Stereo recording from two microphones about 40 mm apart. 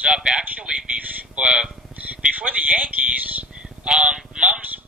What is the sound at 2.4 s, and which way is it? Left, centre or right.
Speech, right.